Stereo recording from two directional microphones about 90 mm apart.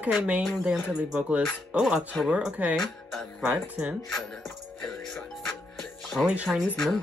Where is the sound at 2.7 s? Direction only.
Centre (ahead or behind).